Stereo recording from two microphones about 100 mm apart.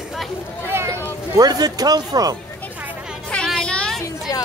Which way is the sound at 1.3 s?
40° right (ahead or behind).